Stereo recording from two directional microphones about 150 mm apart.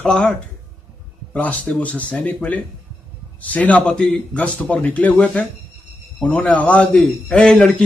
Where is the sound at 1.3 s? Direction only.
10° left (ahead or behind).